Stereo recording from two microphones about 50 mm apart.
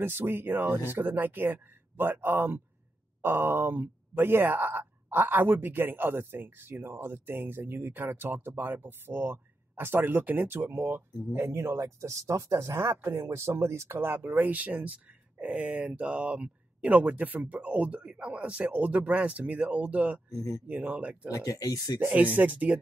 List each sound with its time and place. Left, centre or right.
0.0 s speech: right
11.4 s speech: right
20.3 s speech: left
20.6 s speech: right
21.3 s speech: left
22.1 s speech: right